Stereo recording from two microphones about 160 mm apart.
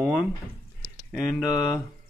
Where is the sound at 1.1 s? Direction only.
Centre (ahead or behind).